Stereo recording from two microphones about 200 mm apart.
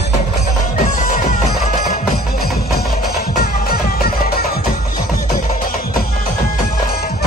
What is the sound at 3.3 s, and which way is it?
Music, 50° left (ahead or behind).